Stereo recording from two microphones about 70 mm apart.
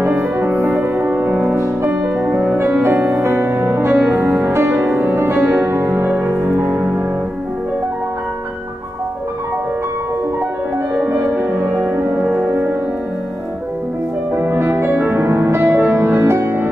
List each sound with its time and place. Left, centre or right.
0.0 s music: right
1.6 s music: right
2.1 s music: centre
2.8 s music: right
11.6 s music: right
14.3 s music: right